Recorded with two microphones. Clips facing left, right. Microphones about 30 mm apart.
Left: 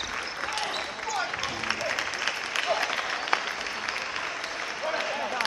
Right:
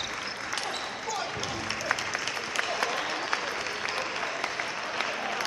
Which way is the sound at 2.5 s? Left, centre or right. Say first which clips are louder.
Left 2 dB; centre.